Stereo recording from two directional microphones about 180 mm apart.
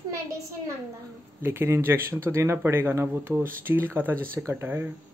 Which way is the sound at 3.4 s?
50° right (ahead or behind).